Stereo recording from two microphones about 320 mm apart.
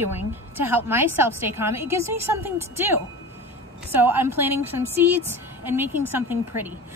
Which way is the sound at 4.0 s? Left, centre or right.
Centre.